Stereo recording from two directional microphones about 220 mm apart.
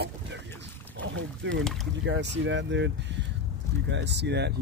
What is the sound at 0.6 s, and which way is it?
Boat, 55° right (ahead or behind).